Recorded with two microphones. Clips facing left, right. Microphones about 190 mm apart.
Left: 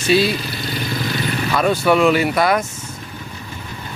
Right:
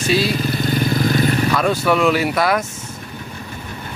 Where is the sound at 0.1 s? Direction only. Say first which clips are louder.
Left 3 dB; centre (ahead or behind).